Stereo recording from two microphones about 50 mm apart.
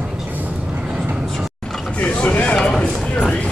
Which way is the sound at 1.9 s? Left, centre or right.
Left.